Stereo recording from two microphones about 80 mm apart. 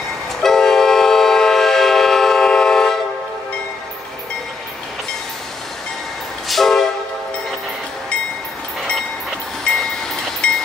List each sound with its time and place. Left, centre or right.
0.4 s train: centre
6.5 s train: centre
10.4 s train: centre